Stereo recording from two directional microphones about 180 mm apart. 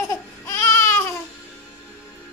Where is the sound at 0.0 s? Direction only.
15° left (ahead or behind).